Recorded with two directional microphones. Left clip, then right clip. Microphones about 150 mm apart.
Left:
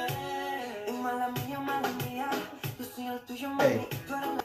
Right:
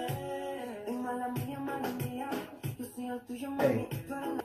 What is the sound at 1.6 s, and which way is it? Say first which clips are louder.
Music: left 6 dB; 25° right (ahead or behind).